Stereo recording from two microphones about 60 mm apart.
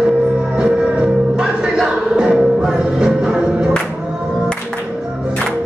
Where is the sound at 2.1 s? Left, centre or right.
Centre.